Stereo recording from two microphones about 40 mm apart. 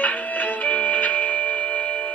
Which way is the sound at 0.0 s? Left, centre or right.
Left.